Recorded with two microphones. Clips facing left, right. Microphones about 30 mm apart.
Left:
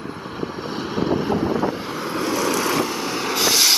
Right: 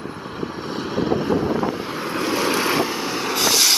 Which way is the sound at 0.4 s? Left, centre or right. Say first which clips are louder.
Even; centre.